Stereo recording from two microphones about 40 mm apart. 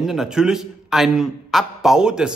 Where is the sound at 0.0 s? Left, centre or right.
Centre.